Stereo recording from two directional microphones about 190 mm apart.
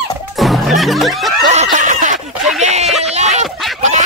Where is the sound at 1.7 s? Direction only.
40° right (ahead or behind).